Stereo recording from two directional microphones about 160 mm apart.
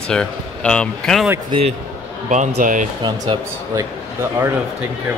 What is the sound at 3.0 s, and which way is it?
Speech, 25° right (ahead or behind).